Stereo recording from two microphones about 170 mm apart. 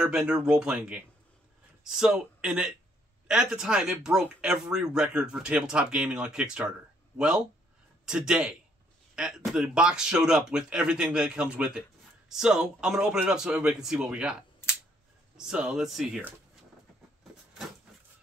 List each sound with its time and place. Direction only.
0.0 s a man's voice: 5° right (ahead or behind)
15.3 s speech: 5° right (ahead or behind)